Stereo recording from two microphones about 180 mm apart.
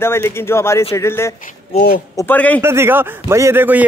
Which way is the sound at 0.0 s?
15° left (ahead or behind).